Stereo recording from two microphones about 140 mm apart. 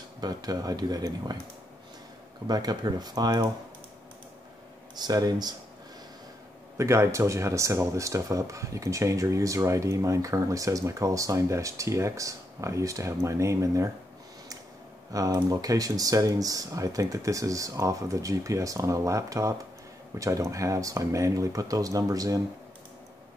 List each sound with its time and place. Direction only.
0.2 s speech: 30° right (ahead or behind)
2.4 s speech: 30° right (ahead or behind)
4.9 s speech: 30° right (ahead or behind)
6.8 s speech: 20° right (ahead or behind)
15.1 s speech: 25° right (ahead or behind)